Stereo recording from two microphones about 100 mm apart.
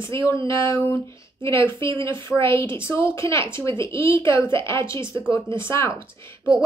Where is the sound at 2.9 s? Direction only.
25° left (ahead or behind).